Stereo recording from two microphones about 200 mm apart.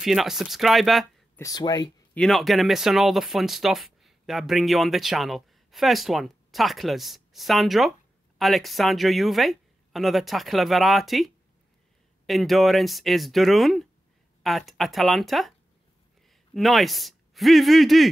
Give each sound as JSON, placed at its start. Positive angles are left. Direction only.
{"t": 0.0, "sound": "speech", "side_deg": 0}
{"t": 1.4, "sound": "speech", "side_deg": 20}
{"t": 2.1, "sound": "speech", "side_deg": 0}